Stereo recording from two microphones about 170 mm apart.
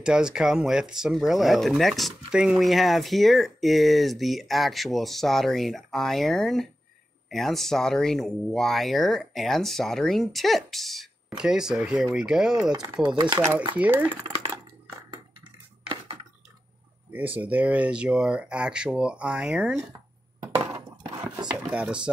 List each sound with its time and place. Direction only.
0.0 s speech: 5° right (ahead or behind)
13.1 s speech: 25° right (ahead or behind)
13.7 s speech: 10° right (ahead or behind)
14.2 s dishes: 35° right (ahead or behind)
17.4 s speech: 10° right (ahead or behind)
21.5 s speech: 5° right (ahead or behind)